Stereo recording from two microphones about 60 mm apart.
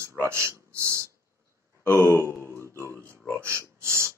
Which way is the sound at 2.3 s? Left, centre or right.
Left.